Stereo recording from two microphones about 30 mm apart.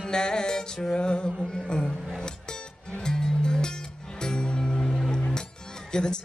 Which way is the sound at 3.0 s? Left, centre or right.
Left.